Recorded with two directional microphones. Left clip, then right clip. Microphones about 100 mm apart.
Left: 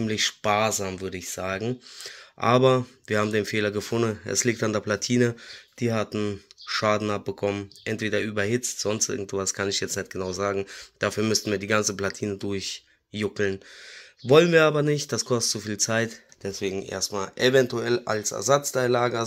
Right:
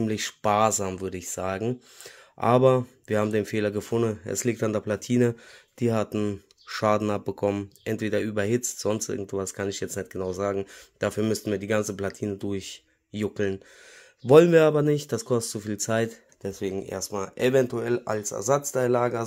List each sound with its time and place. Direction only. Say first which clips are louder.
0.0 s speech: left 2 dB; 60° right (ahead or behind); by 3.9 s 40° right (ahead or behind)
3.9 s speech: left 1 dB; 25° right (ahead or behind)
5.8 s speech: right 1 dB; 65° right (ahead or behind)
8.5 s speech: left 1 dB; 90° right
8.8 s speech: left 1 dB; 50° right (ahead or behind)
14.2 s speech: right 1 dB; 70° right (ahead or behind); by 19.2 s 30° right (ahead or behind)